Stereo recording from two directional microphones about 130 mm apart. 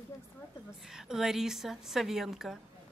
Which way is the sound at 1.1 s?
5° right (ahead or behind).